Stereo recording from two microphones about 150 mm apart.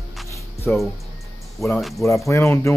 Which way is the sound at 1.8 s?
Centre (ahead or behind).